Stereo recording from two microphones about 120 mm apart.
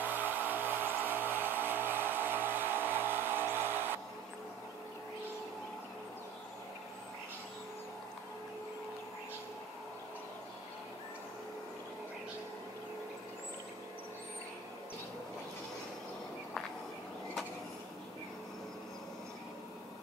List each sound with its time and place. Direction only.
0.0 s music: 15° right (ahead or behind)